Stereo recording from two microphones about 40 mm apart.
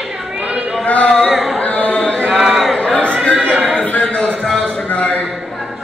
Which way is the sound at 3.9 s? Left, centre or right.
Left.